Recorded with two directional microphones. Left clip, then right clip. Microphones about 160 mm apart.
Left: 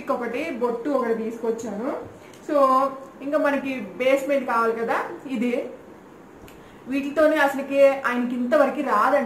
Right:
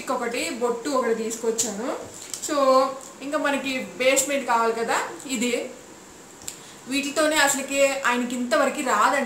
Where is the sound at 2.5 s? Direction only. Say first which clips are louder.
Left 1 dB; 15° right (ahead or behind).